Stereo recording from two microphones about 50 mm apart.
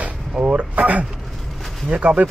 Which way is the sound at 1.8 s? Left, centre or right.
Right.